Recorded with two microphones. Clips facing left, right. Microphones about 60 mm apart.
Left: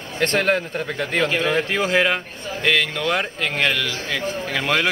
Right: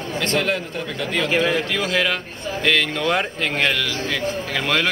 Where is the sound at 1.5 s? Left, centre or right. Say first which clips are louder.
Left 2 dB; left.